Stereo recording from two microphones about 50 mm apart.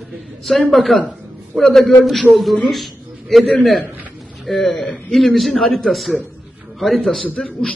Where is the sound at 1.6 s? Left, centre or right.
Centre.